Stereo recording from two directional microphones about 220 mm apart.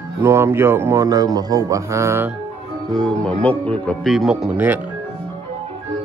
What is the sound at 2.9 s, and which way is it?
Speech, 5° left (ahead or behind).